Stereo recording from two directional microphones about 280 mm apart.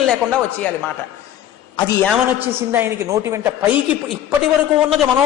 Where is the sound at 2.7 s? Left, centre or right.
Centre.